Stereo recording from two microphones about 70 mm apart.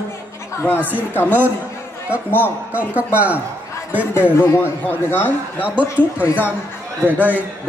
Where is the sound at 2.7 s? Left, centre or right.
Right.